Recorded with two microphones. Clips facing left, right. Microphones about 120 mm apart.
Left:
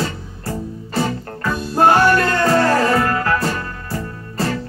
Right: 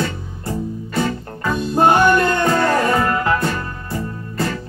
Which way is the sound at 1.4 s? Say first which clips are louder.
Even; 20° right (ahead or behind).